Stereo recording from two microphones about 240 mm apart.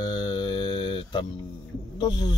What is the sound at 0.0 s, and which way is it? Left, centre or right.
Mantra, centre.